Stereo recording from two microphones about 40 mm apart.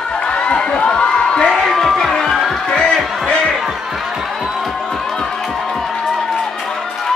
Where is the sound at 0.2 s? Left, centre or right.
Left.